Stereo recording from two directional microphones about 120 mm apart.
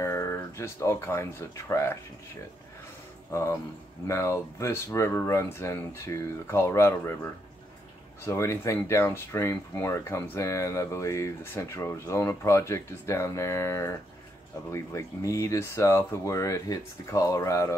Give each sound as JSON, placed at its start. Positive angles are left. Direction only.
{"t": 0.0, "sound": "a sound", "side_deg": 20}
{"t": 1.7, "sound": "speech", "side_deg": 20}
{"t": 3.3, "sound": "speech", "side_deg": 25}
{"t": 8.3, "sound": "speech", "side_deg": 25}